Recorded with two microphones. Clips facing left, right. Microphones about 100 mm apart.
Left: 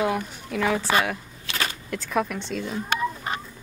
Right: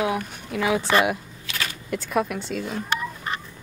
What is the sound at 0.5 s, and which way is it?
Speech, 5° right (ahead or behind).